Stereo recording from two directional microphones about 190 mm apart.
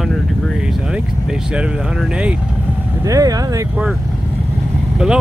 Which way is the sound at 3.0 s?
20° right (ahead or behind).